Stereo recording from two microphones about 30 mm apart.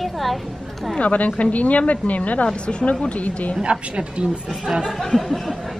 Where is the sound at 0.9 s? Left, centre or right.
Left.